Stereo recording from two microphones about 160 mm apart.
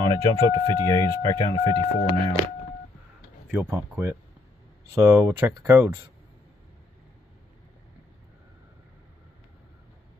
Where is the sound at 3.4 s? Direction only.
15° right (ahead or behind).